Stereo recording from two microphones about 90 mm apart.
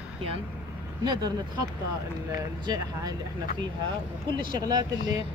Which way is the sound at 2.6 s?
45° right (ahead or behind).